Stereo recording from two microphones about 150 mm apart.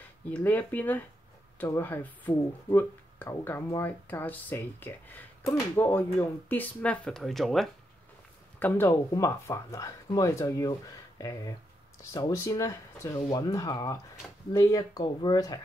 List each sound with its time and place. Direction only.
0.3 s speech: 10° left (ahead or behind)
8.5 s speech: 15° left (ahead or behind)